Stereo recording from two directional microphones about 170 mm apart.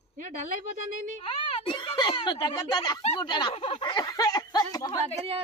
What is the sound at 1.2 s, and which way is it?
Speech, 35° left (ahead or behind).